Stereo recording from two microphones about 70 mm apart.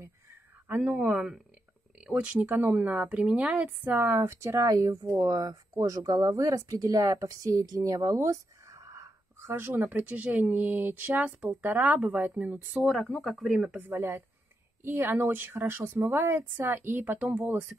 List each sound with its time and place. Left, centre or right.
0.7 s speech: centre
1.0 s speech: centre; by 9.7 s right
9.7 s speech: right
13.2 s speech: centre
13.7 s a woman's voice: right